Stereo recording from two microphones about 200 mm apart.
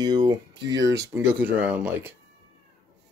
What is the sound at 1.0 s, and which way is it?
Speech, 10° right (ahead or behind).